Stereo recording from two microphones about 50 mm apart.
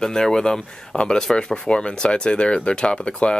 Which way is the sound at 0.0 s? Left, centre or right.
Centre.